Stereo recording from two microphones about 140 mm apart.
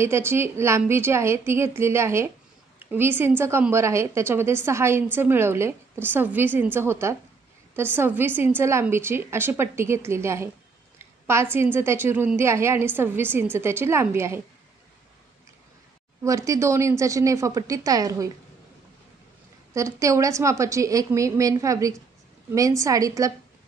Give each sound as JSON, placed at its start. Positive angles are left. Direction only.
{"t": 0.0, "sound": "a woman's voice", "side_deg": -15}
{"t": 11.5, "sound": "a woman's voice", "side_deg": -15}
{"t": 16.3, "sound": "a woman's voice", "side_deg": -20}
{"t": 19.7, "sound": "a woman's voice", "side_deg": -20}